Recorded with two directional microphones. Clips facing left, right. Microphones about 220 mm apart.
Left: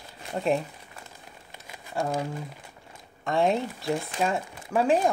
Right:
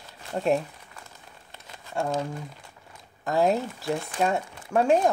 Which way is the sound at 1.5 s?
15° left (ahead or behind).